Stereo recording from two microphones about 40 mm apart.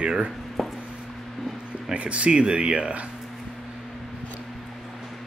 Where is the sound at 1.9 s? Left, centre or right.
Right.